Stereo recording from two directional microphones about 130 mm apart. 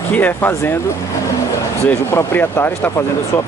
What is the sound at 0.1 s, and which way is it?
Speech, 15° left (ahead or behind).